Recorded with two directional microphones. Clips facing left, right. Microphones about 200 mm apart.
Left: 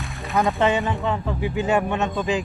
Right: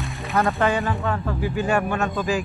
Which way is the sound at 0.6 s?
20° left (ahead or behind).